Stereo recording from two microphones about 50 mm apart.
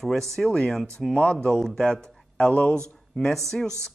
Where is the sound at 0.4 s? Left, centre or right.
Centre.